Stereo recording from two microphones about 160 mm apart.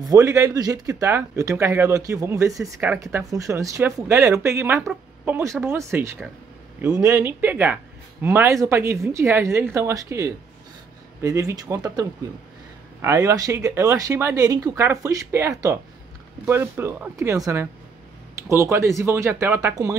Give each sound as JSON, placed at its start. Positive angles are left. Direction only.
{"t": 0.0, "sound": "speech", "side_deg": -20}